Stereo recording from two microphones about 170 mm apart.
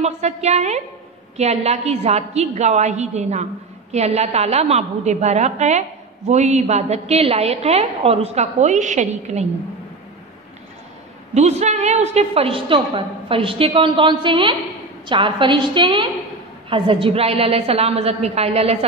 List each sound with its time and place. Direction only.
0.0 s a woman's voice: 40° right (ahead or behind)
11.3 s a woman's voice: 40° right (ahead or behind)